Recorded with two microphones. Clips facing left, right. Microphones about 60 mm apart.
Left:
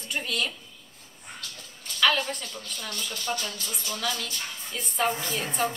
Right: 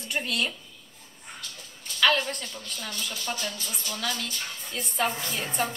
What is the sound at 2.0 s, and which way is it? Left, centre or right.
Speech, centre.